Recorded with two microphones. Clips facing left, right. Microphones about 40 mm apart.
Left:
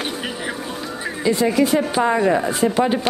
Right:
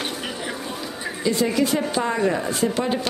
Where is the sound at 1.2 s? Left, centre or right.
Centre.